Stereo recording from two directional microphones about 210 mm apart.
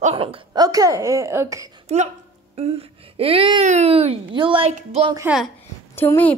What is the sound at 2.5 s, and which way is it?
Speech, 30° right (ahead or behind).